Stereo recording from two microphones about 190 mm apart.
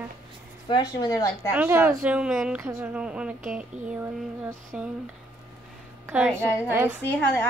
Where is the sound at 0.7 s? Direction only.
20° left (ahead or behind).